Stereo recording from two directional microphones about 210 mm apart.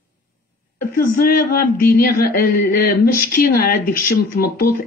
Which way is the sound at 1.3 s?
45° left (ahead or behind).